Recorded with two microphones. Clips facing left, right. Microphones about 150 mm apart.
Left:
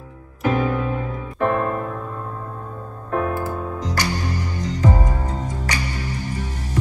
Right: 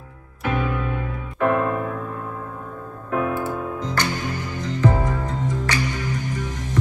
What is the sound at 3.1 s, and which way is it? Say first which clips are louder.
Music: even; 40° left (ahead or behind).